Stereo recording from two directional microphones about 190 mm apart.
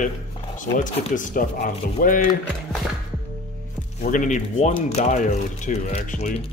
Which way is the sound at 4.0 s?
40° left (ahead or behind).